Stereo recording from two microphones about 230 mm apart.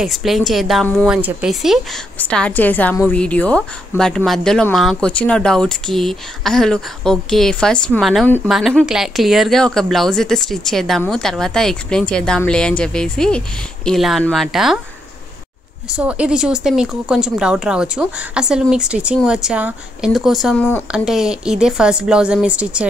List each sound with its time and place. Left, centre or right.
0.0 s speech: centre
16.0 s speech: centre